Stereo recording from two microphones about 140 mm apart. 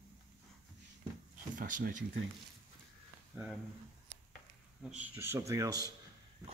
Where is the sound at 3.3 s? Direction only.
5° right (ahead or behind).